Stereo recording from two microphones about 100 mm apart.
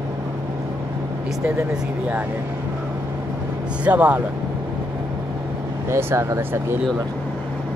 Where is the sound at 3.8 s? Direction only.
15° right (ahead or behind).